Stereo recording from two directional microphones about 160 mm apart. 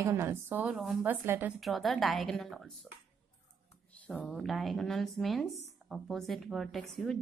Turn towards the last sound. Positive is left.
turn(degrees=0)  # may be behind; listen again after turning